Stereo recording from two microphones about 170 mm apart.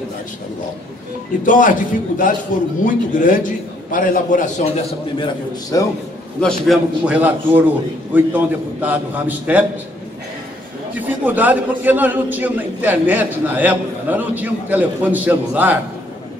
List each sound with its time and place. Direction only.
1.4 s a man's voice: 50° left (ahead or behind)
5.2 s a man's voice: 20° left (ahead or behind)
6.4 s a man's voice: 5° right (ahead or behind)
11.2 s a man's voice: 10° right (ahead or behind)